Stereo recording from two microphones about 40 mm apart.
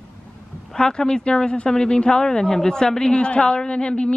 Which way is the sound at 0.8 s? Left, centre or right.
Centre.